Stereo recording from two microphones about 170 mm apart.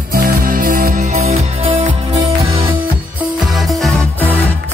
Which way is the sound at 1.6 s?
30° right (ahead or behind).